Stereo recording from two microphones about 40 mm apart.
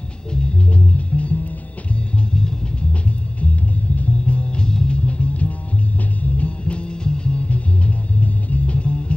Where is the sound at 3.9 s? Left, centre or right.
Left.